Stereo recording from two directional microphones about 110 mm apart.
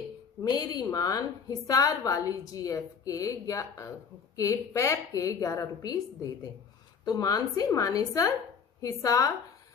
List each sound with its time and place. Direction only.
0.4 s a woman's voice: 35° left (ahead or behind)